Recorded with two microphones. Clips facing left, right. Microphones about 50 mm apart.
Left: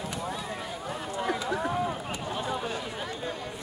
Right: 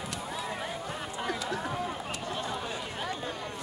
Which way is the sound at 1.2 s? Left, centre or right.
Centre.